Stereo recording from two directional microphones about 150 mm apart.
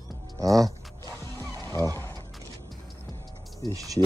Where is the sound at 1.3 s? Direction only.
20° left (ahead or behind).